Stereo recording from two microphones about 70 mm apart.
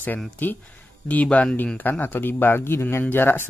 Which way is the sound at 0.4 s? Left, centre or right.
Left.